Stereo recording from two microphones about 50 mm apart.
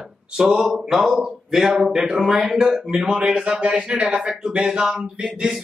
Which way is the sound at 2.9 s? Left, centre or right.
Right.